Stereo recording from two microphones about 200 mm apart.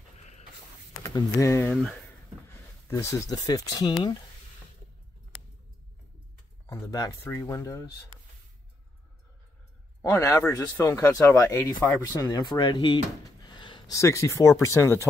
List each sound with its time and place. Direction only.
1.0 s speech: 15° left (ahead or behind)
2.9 s speech: 15° left (ahead or behind)
6.7 s speech: 20° left (ahead or behind)
10.0 s speech: 15° left (ahead or behind)